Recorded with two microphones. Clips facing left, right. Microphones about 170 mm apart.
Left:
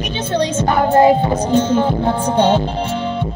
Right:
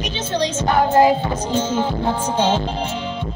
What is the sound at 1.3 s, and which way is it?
Speech, 60° left (ahead or behind).